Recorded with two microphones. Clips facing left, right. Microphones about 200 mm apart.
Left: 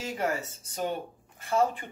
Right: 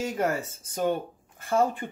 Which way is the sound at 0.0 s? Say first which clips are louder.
Right 4 dB; 50° right (ahead or behind).